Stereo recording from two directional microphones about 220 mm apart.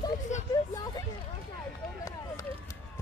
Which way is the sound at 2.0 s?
15° left (ahead or behind).